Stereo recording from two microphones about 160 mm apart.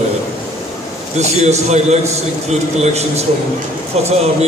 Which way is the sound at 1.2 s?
45° right (ahead or behind).